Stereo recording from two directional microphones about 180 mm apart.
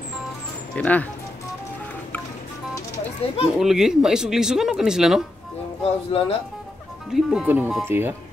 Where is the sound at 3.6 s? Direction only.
Centre (ahead or behind).